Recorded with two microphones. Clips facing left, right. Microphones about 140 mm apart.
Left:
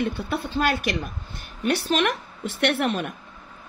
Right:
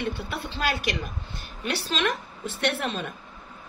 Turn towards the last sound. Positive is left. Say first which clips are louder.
# left 5 dB
turn(degrees=65)  # may be behind; listen again after turning